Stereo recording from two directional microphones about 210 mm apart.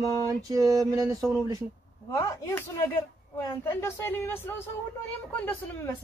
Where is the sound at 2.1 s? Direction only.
10° left (ahead or behind).